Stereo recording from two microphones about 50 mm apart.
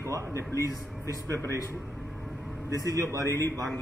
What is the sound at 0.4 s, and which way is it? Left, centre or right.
Speech, left.